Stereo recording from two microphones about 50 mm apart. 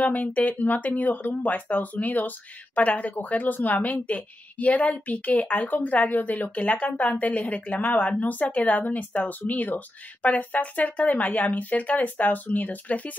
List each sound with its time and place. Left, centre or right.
0.0 s speech: left